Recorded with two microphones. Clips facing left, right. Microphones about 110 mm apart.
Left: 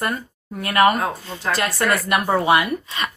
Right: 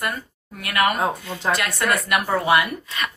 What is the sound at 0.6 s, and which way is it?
Speech, 30° left (ahead or behind).